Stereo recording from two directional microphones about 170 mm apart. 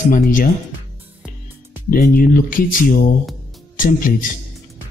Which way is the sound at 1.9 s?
55° left (ahead or behind).